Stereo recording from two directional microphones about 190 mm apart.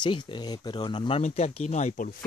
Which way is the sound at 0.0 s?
25° left (ahead or behind).